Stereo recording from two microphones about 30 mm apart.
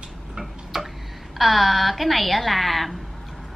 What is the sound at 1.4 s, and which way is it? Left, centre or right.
A woman's voice, centre.